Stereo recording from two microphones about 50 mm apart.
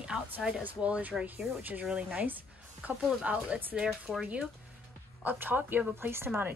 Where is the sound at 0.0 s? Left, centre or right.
Centre.